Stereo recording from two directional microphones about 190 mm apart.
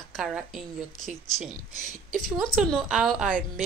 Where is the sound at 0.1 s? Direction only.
Centre (ahead or behind).